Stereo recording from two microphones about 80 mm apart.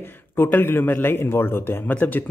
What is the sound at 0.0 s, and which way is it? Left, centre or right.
A man's voice, left.